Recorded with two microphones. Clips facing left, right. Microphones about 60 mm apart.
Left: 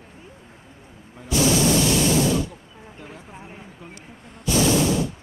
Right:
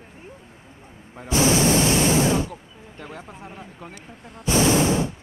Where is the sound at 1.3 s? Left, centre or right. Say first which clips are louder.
Right 1 dB; right.